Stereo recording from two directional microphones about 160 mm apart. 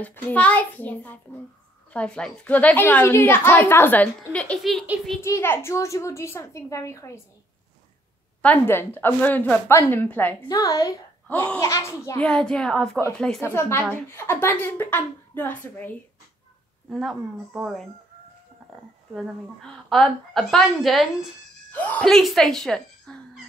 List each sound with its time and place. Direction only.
0.0 s a woman's voice: 10° left (ahead or behind)
5.2 s a woman's voice: 15° left (ahead or behind)
8.4 s a woman's voice: 10° left (ahead or behind)
10.5 s a child's voice: 20° left (ahead or behind)
11.2 s a woman's voice: 5° left (ahead or behind)
11.6 s a child's voice: 15° left (ahead or behind)
12.2 s a woman's voice: 5° left (ahead or behind)
13.4 s a woman's voice: 15° left (ahead or behind)
16.9 s a woman's voice: centre (ahead or behind)
19.1 s a woman's voice: 5° left (ahead or behind)